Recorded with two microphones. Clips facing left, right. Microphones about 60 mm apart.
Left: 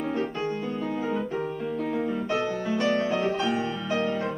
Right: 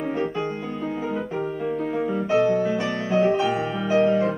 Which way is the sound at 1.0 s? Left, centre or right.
Centre.